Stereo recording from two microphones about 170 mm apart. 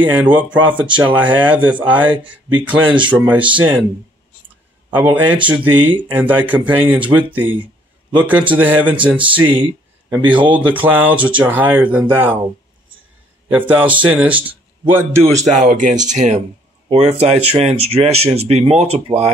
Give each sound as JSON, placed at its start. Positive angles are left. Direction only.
{"t": 0.0, "sound": "speech", "side_deg": -10}
{"t": 4.9, "sound": "speech", "side_deg": -10}
{"t": 13.5, "sound": "speech", "side_deg": -10}
{"t": 15.4, "sound": "speech", "side_deg": -50}